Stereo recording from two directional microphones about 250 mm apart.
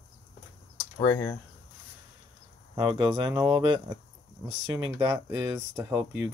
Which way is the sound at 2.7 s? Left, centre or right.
Centre.